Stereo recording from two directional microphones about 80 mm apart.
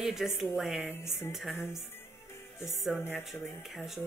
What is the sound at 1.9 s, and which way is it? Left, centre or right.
Music, left.